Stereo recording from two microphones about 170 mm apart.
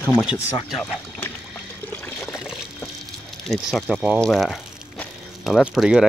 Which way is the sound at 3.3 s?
Centre (ahead or behind).